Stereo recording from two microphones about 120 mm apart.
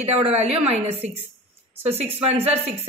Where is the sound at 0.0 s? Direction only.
60° right (ahead or behind).